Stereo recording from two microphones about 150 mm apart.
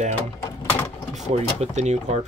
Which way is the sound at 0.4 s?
20° left (ahead or behind).